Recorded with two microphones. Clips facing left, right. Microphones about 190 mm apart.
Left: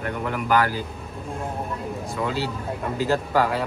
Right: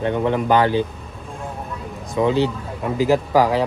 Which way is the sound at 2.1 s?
20° right (ahead or behind).